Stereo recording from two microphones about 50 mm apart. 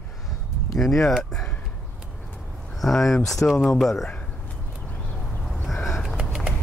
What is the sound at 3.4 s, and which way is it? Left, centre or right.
Speech, left.